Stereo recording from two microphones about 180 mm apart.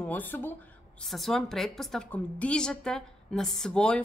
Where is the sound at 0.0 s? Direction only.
10° left (ahead or behind).